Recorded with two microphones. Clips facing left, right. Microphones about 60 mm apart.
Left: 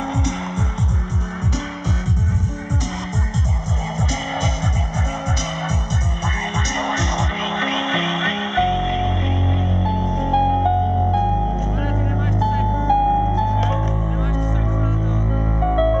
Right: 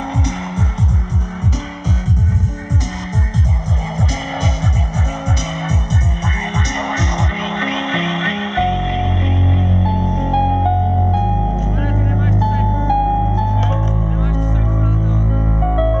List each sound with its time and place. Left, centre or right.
6.5 s music: right
10.0 s music: right
10.6 s music: centre
12.4 s music: right
13.6 s music: centre
15.7 s music: centre